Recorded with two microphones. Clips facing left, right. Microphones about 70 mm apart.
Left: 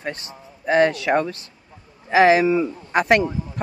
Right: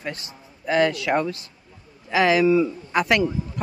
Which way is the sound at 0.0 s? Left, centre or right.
Left.